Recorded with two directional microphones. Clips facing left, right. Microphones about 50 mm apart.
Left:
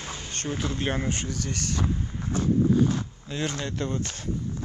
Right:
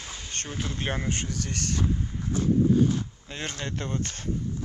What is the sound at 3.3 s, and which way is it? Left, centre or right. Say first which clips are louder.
Speech: left 7 dB; right.